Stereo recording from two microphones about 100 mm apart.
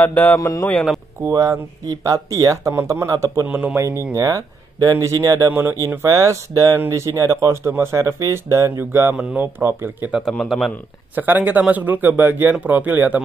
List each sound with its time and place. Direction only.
0.0 s speech: 15° left (ahead or behind)
0.4 s speech: 35° left (ahead or behind)
1.2 s speech: 30° right (ahead or behind)
3.1 s speech: 35° right (ahead or behind)
3.4 s speech: 20° right (ahead or behind)
3.7 s speech: 30° right (ahead or behind)
5.5 s speech: 20° right (ahead or behind)
6.0 s speech: 35° right (ahead or behind)
9.1 s speech: 15° right (ahead or behind)
10.3 s a man's voice: 5° left (ahead or behind)
11.1 s speech: 20° right (ahead or behind)